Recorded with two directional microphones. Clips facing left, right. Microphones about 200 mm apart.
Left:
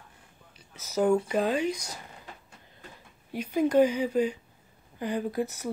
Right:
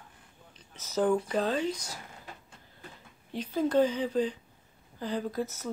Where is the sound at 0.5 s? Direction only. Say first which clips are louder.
Left 2 dB; 10° left (ahead or behind).